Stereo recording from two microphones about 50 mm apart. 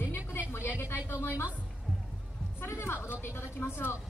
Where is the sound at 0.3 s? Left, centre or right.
Left.